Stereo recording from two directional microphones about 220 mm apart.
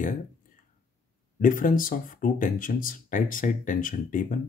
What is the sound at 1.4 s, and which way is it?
Speech, 35° left (ahead or behind).